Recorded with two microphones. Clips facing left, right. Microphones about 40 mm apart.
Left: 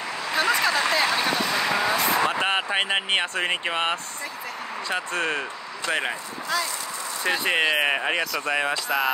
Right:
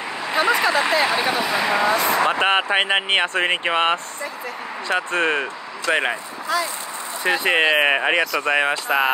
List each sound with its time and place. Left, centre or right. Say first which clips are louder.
0.3 s speech: right 4 dB; centre
2.2 s speech: right 5 dB; right
6.5 s speech: right 4 dB; centre
7.2 s speech: right 5 dB; centre